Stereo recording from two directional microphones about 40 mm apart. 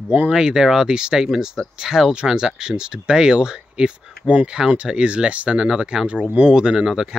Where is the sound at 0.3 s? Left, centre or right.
Centre.